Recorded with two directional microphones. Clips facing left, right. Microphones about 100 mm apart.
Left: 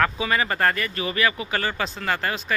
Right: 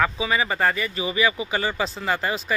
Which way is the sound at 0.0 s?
5° right (ahead or behind).